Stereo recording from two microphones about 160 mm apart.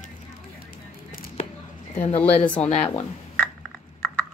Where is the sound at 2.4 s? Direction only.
10° left (ahead or behind).